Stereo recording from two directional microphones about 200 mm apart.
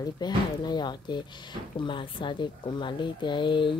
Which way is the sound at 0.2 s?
20° left (ahead or behind).